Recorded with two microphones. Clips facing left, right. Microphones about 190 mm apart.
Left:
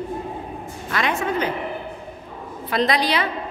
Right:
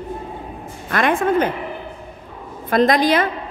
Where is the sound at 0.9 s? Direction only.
50° right (ahead or behind).